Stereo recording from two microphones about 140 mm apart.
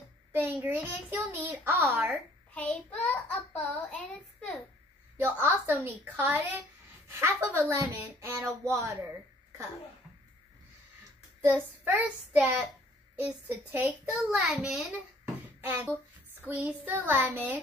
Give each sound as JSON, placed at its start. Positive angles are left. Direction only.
{"t": 0.3, "sound": "a child's voice", "side_deg": -15}
{"t": 2.5, "sound": "a child's voice", "side_deg": 10}
{"t": 5.4, "sound": "a child's voice", "side_deg": -10}
{"t": 11.8, "sound": "a child's voice", "side_deg": -15}
{"t": 15.6, "sound": "a child's voice", "side_deg": -15}